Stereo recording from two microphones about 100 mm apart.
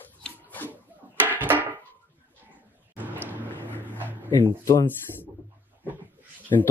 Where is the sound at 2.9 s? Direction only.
20° right (ahead or behind).